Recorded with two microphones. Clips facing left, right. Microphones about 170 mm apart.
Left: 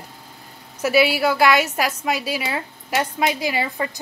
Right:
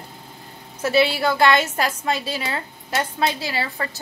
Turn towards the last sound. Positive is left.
turn(degrees=15)  # may be behind; listen again after turning